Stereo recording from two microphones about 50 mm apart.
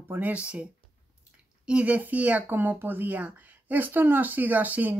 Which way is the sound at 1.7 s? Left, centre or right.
Right.